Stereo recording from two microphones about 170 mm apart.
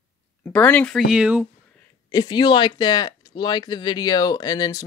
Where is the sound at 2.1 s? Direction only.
25° left (ahead or behind).